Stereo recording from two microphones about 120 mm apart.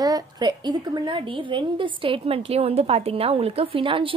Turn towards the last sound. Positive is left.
turn(degrees=-45)  # may be behind; listen again after turning